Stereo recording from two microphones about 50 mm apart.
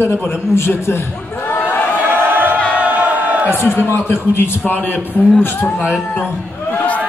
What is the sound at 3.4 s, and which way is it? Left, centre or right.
A man's voice, left.